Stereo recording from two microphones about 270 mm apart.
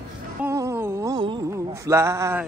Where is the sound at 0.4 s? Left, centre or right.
Centre.